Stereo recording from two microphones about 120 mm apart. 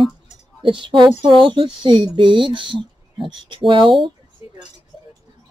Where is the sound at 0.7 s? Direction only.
45° right (ahead or behind).